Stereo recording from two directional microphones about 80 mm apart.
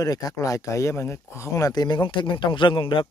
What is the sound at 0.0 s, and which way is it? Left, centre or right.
Speech, left.